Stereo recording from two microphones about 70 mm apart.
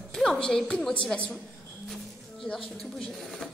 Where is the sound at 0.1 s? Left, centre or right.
Centre.